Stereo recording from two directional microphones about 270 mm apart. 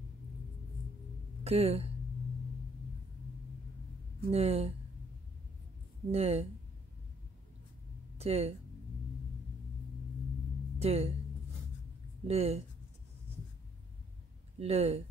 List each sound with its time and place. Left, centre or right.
1.4 s speech: right
4.3 s speech: right
6.1 s speech: right
8.2 s speech: right
10.8 s speech: right
12.3 s speech: right
14.6 s speech: right